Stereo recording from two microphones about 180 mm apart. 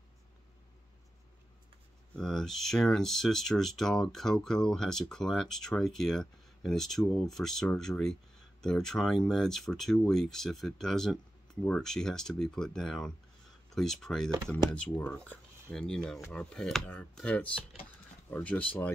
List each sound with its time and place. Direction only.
2.1 s speech: centre (ahead or behind)